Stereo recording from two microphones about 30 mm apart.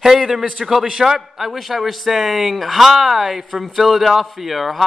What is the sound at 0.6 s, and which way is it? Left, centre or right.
A man's voice, centre.